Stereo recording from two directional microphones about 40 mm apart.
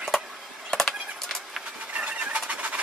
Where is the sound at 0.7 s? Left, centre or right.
Centre.